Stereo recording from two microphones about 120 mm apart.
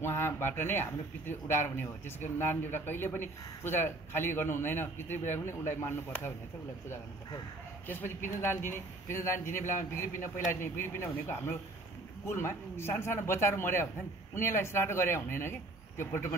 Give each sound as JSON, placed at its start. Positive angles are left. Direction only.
{"t": 0.0, "sound": "a man's voice", "side_deg": 20}
{"t": 7.9, "sound": "speech", "side_deg": 20}